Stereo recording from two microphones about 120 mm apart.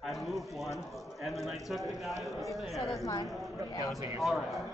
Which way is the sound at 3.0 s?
30° left (ahead or behind).